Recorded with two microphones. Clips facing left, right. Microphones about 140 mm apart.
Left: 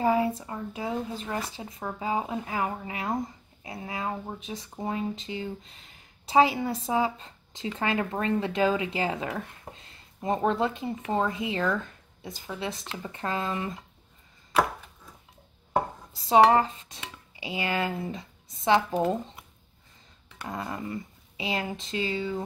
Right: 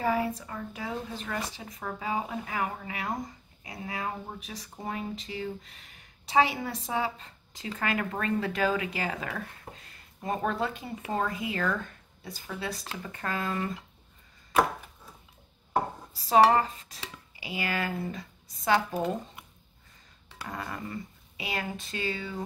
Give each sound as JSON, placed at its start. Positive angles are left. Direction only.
{"t": 0.0, "sound": "speech", "side_deg": 25}
{"t": 16.3, "sound": "dishes", "side_deg": 20}
{"t": 20.4, "sound": "speech", "side_deg": 20}